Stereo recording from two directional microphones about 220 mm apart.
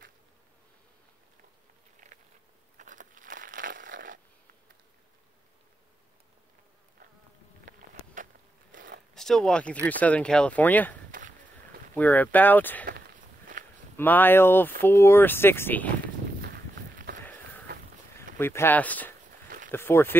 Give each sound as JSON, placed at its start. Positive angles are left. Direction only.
{"t": 2.0, "sound": "insect", "side_deg": -35}
{"t": 2.8, "sound": "crumpling", "side_deg": -35}
{"t": 7.6, "sound": "insect", "side_deg": -35}
{"t": 8.7, "sound": "zipper", "side_deg": -40}
{"t": 9.1, "sound": "speech", "side_deg": 0}
{"t": 11.1, "sound": "a sound", "side_deg": -40}
{"t": 11.9, "sound": "speech", "side_deg": 5}
{"t": 13.5, "sound": "walk", "side_deg": -35}
{"t": 13.9, "sound": "speech", "side_deg": 10}
{"t": 16.3, "sound": "walk", "side_deg": -45}
{"t": 18.4, "sound": "speech", "side_deg": 10}